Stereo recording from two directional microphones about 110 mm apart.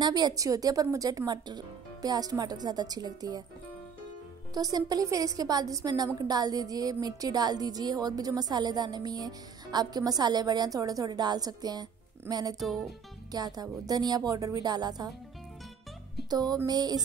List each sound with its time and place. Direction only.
0.0 s speech: 40° right (ahead or behind)
4.6 s speech: 35° right (ahead or behind)
12.5 s music: centre (ahead or behind)
13.3 s speech: 35° right (ahead or behind)
16.3 s speech: 35° right (ahead or behind)